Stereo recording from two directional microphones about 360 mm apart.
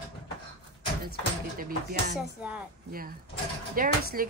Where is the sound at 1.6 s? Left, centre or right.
Right.